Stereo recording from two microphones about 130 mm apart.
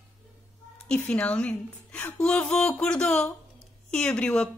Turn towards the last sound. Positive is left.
turn(degrees=5)  # may be behind; listen again after turning